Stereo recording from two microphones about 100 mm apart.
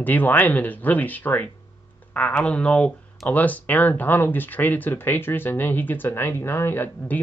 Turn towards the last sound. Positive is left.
turn(degrees=20)  # may be behind; listen again after turning